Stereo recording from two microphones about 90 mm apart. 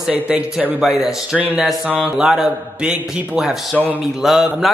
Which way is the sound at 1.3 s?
20° right (ahead or behind).